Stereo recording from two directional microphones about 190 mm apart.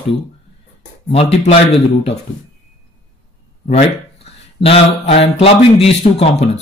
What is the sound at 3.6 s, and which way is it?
Speech, 30° left (ahead or behind).